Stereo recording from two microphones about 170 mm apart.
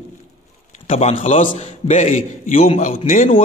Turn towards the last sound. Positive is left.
turn(degrees=45)  # may be behind; listen again after turning